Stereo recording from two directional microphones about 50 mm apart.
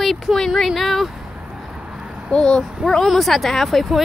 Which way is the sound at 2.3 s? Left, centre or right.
Centre.